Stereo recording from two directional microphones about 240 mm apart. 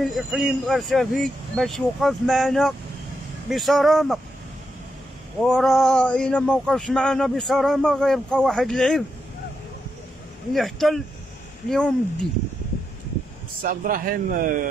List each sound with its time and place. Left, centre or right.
0.1 s speech: centre
5.4 s speech: centre
10.5 s speech: centre
13.6 s a man's voice: right